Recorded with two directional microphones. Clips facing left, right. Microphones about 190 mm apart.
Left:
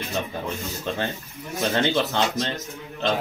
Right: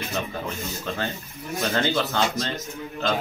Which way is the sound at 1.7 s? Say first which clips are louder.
Left 2 dB; 20° left (ahead or behind).